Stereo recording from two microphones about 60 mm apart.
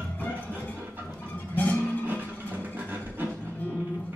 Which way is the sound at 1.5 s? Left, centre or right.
Left.